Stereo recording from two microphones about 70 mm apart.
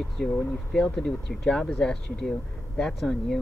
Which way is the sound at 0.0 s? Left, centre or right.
Centre.